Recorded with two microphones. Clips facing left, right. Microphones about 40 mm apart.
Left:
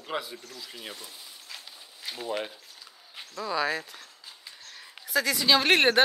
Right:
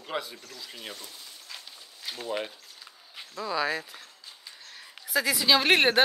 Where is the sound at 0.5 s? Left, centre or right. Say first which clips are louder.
Right 3 dB; centre.